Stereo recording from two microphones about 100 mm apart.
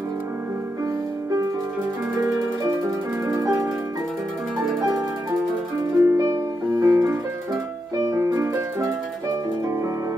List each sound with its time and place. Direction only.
3.3 s music: 30° right (ahead or behind)
5.8 s music: 40° right (ahead or behind)